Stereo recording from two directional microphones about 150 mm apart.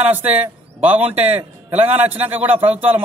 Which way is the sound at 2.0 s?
10° right (ahead or behind).